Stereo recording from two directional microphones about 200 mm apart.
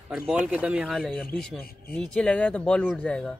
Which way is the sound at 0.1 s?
5° right (ahead or behind).